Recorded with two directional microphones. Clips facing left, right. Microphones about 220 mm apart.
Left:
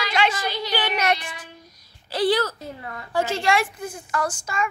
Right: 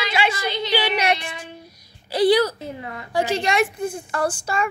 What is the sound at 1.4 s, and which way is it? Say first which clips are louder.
A woman's voice: right 6 dB; 10° right (ahead or behind).